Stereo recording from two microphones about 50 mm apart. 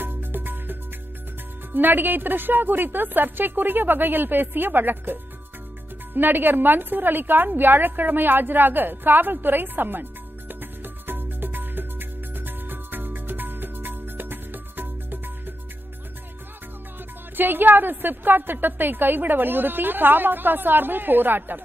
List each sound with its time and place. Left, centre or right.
0.0 s music: right
1.7 s a woman's voice: right
10.5 s music: right
17.4 s a woman's voice: right